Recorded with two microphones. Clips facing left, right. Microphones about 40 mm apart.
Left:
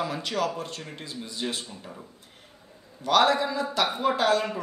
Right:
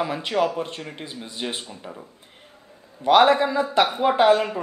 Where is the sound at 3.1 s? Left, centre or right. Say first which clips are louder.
Right 6 dB; right.